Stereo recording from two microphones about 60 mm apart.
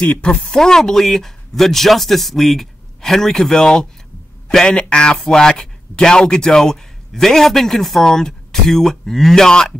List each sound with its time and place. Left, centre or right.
0.0 s speech: left
0.5 s a man's voice: centre